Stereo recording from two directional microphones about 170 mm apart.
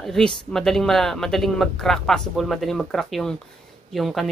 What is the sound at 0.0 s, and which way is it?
Speech, 5° left (ahead or behind).